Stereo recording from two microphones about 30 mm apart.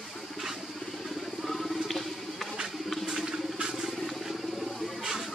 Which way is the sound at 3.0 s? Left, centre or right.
Centre.